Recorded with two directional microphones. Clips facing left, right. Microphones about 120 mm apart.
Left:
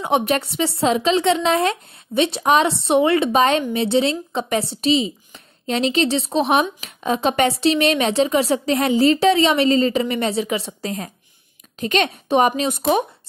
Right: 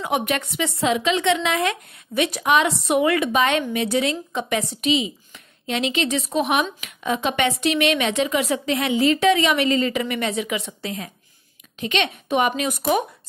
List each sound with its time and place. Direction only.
0.0 s a woman's voice: 30° left (ahead or behind)